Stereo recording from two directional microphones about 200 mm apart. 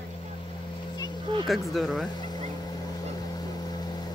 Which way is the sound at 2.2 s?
20° left (ahead or behind).